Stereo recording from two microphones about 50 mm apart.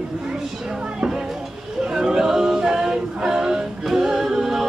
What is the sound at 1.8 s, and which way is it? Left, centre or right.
Singing, centre.